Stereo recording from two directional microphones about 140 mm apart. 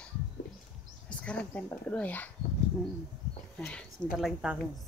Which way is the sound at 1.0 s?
10° left (ahead or behind).